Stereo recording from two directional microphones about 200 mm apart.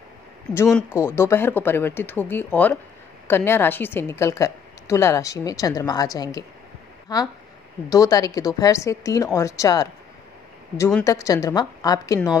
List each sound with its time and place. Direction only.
0.7 s speech: centre (ahead or behind)
0.9 s a woman's voice: 10° left (ahead or behind)
11.1 s a woman's voice: 15° left (ahead or behind)